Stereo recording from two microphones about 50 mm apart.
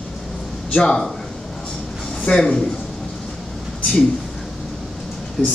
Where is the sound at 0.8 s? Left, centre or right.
Centre.